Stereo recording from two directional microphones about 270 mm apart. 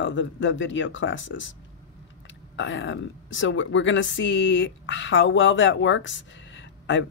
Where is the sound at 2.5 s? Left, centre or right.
Left.